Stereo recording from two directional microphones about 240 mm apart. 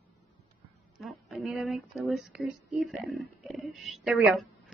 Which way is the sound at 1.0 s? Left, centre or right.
Centre.